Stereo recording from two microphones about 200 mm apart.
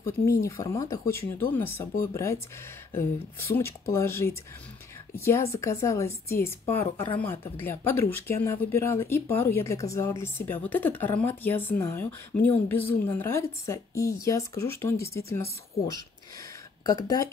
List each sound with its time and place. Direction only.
0.4 s speech: 15° left (ahead or behind)
16.8 s speech: 20° left (ahead or behind)